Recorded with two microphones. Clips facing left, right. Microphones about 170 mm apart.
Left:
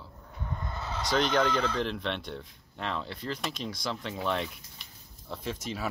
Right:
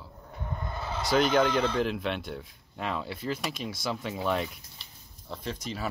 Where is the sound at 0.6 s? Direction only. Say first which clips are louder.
Right 2 dB; 25° right (ahead or behind).